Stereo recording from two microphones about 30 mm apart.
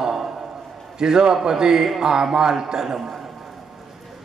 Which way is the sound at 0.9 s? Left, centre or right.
Right.